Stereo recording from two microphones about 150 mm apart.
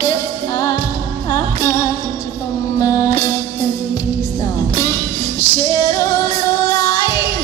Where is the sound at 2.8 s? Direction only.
20° left (ahead or behind).